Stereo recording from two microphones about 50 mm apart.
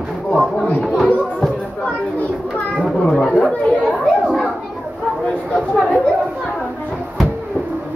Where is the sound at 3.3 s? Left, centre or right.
Left.